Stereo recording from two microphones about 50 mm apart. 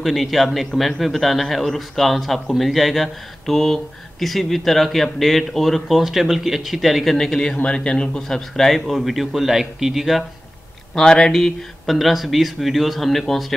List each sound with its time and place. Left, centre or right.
0.0 s a man's voice: centre
8.2 s a man's voice: centre
11.0 s a man's voice: centre